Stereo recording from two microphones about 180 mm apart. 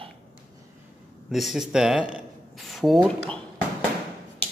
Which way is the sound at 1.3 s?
Centre (ahead or behind).